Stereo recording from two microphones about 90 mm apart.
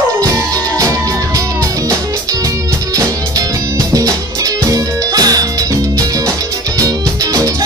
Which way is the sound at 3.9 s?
40° right (ahead or behind).